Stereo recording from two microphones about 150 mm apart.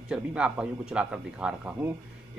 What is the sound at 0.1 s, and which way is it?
Speech, 5° right (ahead or behind).